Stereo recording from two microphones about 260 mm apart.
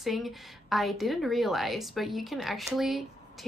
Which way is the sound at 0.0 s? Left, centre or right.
Centre.